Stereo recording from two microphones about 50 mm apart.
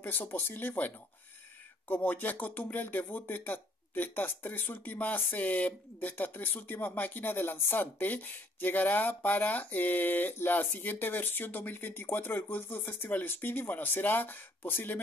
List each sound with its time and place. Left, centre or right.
0.0 s speech: left